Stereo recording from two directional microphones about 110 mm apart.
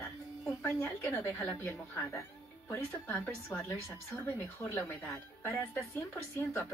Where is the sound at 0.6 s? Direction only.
25° left (ahead or behind).